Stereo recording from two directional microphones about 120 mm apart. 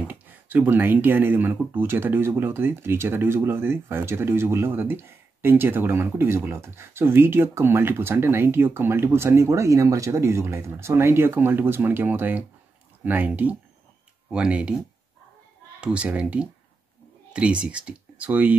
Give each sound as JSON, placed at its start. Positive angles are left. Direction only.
{"t": 0.1, "sound": "speech", "side_deg": -15}
{"t": 15.8, "sound": "speech", "side_deg": -10}